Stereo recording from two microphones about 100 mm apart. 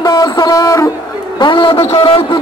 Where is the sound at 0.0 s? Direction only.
45° left (ahead or behind).